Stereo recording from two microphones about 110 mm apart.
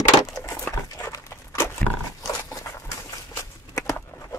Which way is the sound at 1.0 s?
30° left (ahead or behind).